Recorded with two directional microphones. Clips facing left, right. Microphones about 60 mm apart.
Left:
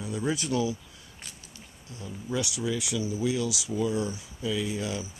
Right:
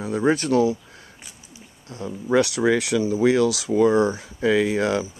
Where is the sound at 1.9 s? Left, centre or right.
Right.